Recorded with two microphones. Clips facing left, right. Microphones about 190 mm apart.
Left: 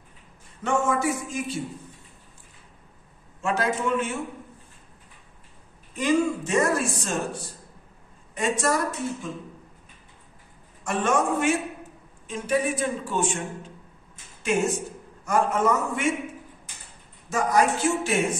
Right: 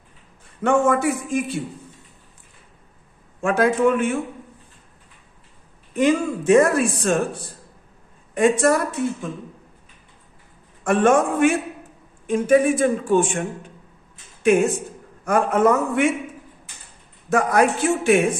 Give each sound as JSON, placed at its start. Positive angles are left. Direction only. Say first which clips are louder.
{"t": 0.6, "sound": "speech", "louder": "right 6 dB", "side_deg": -55}
{"t": 3.3, "sound": "speech", "louder": "right 7 dB", "side_deg": -55}
{"t": 5.9, "sound": "speech", "louder": "right 4 dB", "side_deg": -60}
{"t": 10.8, "sound": "a man's voice", "louder": "right 7 dB", "side_deg": -55}
{"t": 17.3, "sound": "speech", "louder": "right 4 dB", "side_deg": -60}